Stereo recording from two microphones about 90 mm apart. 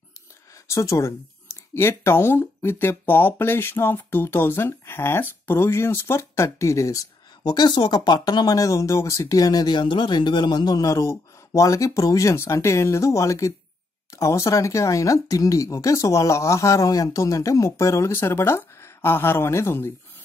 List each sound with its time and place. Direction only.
0.7 s speech: 35° left (ahead or behind)